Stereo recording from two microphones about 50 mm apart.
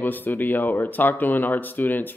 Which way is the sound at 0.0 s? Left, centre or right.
Left.